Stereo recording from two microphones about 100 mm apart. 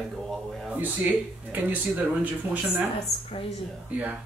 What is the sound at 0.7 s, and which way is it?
Speech, 15° right (ahead or behind).